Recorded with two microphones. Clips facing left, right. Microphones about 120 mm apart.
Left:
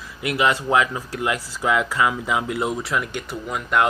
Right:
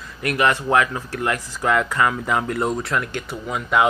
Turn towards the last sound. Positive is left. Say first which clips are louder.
# right 1 dB
turn(degrees=0)  # may be behind; listen again after turning